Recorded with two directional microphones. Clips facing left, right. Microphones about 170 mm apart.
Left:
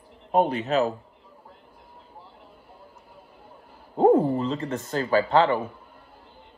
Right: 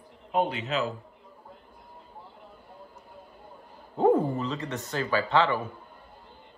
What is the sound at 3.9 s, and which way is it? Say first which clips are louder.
Speech: left 4 dB; 35° left (ahead or behind).